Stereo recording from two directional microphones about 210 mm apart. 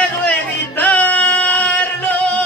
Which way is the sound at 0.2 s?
5° left (ahead or behind).